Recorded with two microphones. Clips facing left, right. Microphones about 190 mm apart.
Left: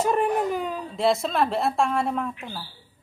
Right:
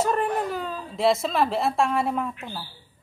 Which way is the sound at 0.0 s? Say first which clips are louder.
Left 2 dB; 15° left (ahead or behind).